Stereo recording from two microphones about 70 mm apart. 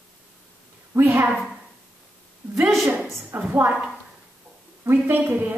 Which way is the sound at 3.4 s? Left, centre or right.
Right.